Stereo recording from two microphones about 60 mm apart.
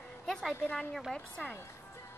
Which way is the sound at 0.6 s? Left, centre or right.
Left.